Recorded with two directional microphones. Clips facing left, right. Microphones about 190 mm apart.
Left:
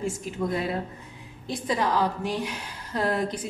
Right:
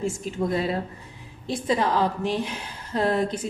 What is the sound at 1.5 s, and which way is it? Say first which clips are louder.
A man's voice: right 2 dB; 25° right (ahead or behind).